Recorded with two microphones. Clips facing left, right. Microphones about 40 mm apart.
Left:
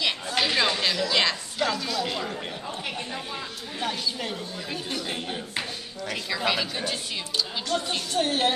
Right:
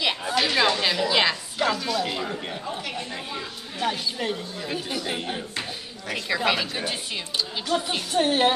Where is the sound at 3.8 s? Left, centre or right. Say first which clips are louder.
Right 3 dB; centre.